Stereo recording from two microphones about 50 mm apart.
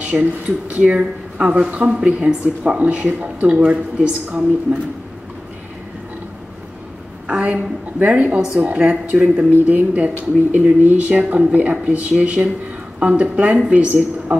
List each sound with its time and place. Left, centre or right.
0.0 s a sound: right
0.7 s speech: right
7.2 s speech: right